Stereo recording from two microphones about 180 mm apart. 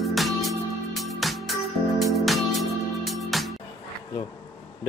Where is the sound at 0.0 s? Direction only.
Centre (ahead or behind).